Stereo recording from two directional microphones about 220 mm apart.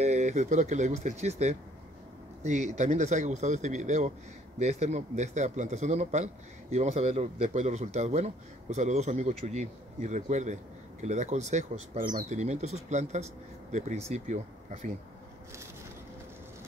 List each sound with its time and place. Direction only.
0.0 s a man's voice: 30° right (ahead or behind)